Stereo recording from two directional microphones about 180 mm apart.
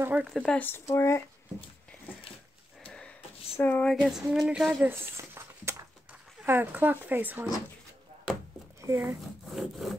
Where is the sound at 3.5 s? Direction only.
10° left (ahead or behind).